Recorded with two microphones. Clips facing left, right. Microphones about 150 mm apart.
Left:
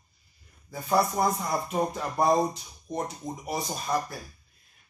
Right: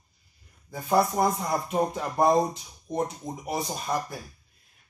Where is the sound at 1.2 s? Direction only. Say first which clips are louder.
Right 1 dB; centre (ahead or behind).